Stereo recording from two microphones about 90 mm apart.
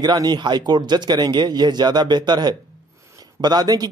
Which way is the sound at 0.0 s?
50° right (ahead or behind).